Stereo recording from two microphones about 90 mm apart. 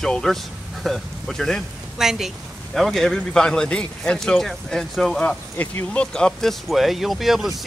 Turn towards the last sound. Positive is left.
turn(degrees=0)  # may be behind; listen again after turning